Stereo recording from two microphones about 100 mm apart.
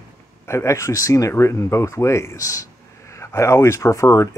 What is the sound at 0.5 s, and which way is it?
Speech, 30° left (ahead or behind).